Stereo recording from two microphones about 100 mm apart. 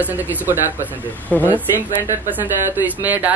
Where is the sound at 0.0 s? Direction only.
15° right (ahead or behind).